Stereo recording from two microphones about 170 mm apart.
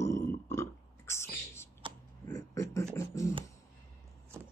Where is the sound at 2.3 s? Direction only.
20° left (ahead or behind).